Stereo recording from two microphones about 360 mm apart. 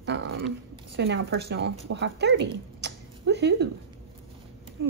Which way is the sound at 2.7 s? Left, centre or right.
Right.